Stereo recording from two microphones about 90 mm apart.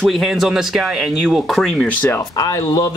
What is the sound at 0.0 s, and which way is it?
Speech, centre (ahead or behind).